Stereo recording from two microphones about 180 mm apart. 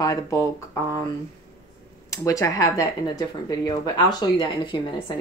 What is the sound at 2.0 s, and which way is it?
Speech, 20° left (ahead or behind).